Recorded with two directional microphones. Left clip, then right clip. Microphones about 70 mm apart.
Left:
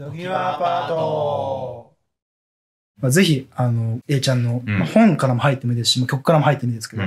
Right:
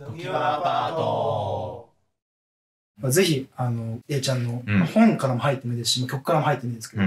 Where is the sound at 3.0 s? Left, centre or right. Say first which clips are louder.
Left 3 dB; left.